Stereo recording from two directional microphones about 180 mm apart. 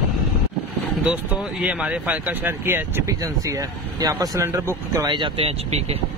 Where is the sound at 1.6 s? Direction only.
10° right (ahead or behind); by 6.0 s 35° right (ahead or behind).